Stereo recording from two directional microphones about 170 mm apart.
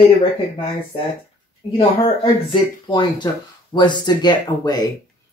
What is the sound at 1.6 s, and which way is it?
Speech, 30° left (ahead or behind).